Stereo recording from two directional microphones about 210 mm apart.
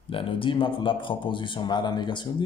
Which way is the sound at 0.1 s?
25° left (ahead or behind).